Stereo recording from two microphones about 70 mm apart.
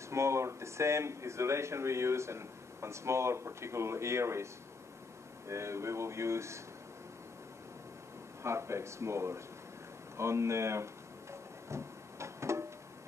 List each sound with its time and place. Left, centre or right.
0.1 s speech: right
5.5 s speech: right
8.4 s speech: right
11.7 s a sound: right